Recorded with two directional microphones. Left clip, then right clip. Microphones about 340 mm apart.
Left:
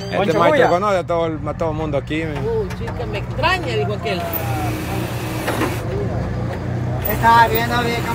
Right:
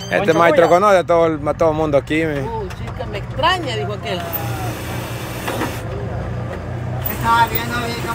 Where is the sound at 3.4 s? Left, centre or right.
Centre.